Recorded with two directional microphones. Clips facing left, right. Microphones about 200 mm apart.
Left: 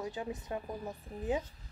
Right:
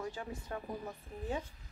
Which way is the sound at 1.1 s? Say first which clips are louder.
Left 2 dB; 35° left (ahead or behind).